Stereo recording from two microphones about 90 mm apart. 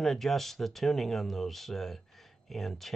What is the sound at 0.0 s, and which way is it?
Speech, 5° left (ahead or behind).